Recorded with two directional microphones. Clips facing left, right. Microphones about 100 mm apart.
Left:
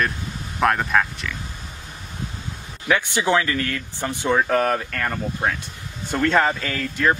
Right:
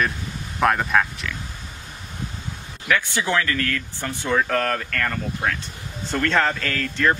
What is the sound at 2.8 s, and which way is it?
Speech, 20° left (ahead or behind).